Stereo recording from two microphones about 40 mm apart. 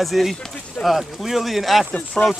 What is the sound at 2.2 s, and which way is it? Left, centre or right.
Speech, left.